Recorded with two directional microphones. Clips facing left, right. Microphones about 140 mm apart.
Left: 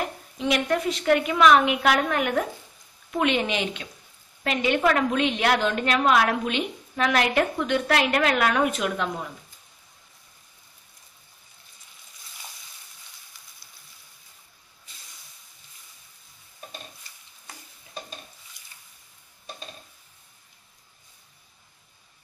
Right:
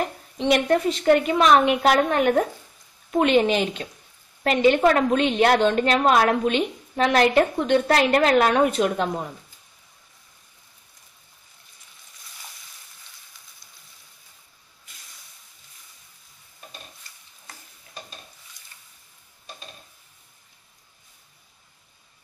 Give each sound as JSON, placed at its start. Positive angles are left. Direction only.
{"t": 0.4, "sound": "a woman's voice", "side_deg": -35}
{"t": 18.6, "sound": "boat", "side_deg": 10}